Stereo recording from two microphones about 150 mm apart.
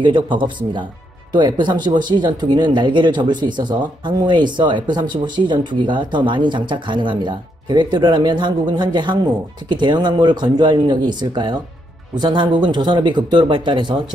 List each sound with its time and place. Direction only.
0.0 s speech: 30° right (ahead or behind)